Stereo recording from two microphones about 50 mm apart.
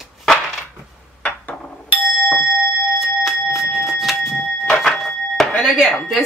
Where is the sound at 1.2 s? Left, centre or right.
Left.